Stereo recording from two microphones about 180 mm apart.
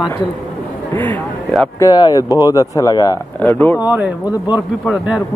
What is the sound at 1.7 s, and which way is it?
Speech, 25° left (ahead or behind).